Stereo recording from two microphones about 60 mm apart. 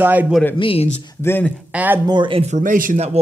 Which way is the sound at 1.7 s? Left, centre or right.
Right.